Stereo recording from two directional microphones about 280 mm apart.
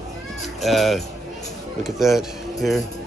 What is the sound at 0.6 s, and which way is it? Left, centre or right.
Speech, centre.